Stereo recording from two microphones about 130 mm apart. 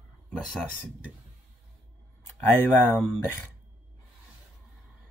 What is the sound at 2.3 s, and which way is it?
Speech, 15° left (ahead or behind).